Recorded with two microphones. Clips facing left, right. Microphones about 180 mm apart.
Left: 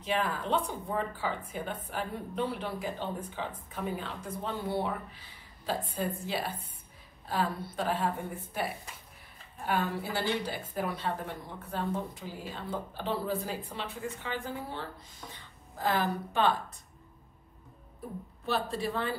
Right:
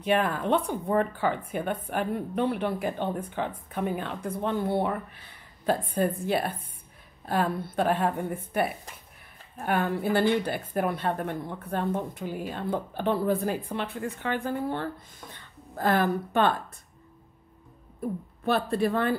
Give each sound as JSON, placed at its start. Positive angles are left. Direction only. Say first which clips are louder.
{"t": 0.0, "sound": "speech", "louder": "right 6 dB", "side_deg": -60}
{"t": 9.6, "sound": "a woman's voice", "louder": "right 5 dB", "side_deg": -55}
{"t": 18.4, "sound": "speech", "louder": "right 7 dB", "side_deg": -55}